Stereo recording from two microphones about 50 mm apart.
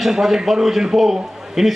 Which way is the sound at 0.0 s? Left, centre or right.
Centre.